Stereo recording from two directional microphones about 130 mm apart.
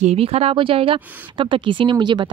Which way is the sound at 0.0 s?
55° right (ahead or behind).